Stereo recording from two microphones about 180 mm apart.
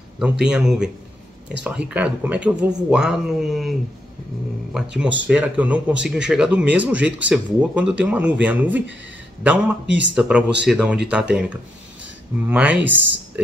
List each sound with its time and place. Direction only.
0.2 s speech: 5° right (ahead or behind)
4.7 s speech: 5° right (ahead or behind)
9.8 s speech: 85° right
10.1 s speech: 5° right (ahead or behind)
12.4 s speech: 10° right (ahead or behind)